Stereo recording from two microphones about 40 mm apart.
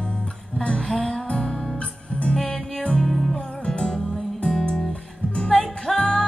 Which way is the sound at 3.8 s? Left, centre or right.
Centre.